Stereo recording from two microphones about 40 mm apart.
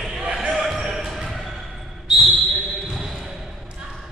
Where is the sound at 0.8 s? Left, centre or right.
Right.